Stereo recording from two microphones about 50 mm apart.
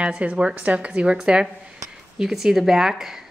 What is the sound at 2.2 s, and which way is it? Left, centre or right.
A woman's voice, centre.